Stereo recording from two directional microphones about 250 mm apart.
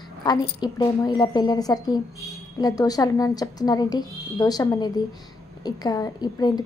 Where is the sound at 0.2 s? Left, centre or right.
Centre.